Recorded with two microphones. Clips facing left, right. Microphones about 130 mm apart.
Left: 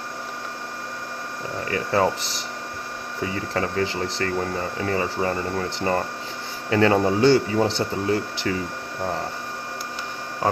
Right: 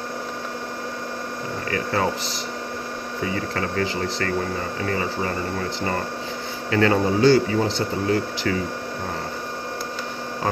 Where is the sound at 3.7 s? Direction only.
25° left (ahead or behind).